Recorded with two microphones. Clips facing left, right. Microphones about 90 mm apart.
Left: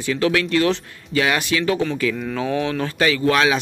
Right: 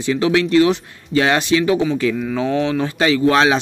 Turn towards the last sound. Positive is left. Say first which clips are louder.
# right 3 dB
turn(degrees=-25)  # may be behind; listen again after turning